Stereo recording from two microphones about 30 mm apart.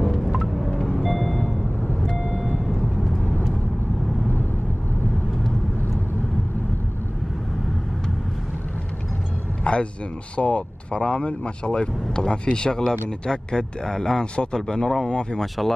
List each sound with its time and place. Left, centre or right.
1.0 s music: centre
2.7 s vehicle: centre
9.7 s a sound: left
10.3 s speech: left; by 15.0 s centre
15.0 s speech: left
15.4 s speech: centre